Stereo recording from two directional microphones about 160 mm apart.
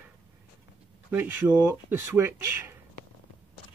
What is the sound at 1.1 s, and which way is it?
Speech, 10° right (ahead or behind).